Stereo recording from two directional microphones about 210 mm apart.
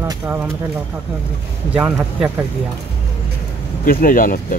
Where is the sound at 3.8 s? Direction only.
40° left (ahead or behind).